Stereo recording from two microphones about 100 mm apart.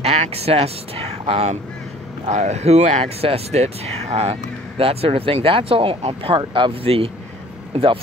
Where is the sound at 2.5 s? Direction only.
90° right.